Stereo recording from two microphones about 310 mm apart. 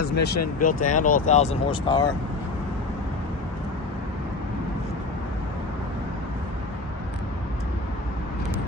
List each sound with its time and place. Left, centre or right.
0.0 s speech: left; by 2.0 s centre